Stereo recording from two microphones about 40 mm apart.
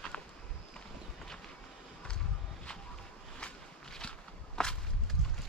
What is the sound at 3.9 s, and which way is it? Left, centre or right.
Walk, centre.